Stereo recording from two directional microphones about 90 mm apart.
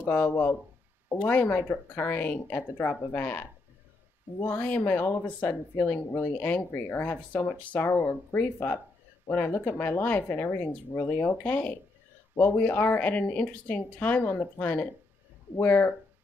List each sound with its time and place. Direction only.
0.0 s speech: 20° left (ahead or behind)